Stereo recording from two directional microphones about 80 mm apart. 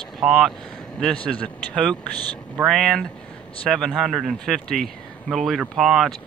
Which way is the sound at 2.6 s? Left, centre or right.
Centre.